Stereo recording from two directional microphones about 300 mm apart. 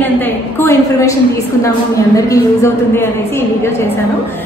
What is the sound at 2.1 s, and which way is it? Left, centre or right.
A woman's voice, centre.